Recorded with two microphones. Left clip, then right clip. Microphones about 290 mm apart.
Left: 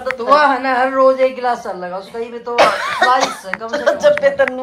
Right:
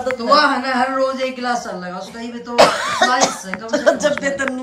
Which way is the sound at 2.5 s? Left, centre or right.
Centre.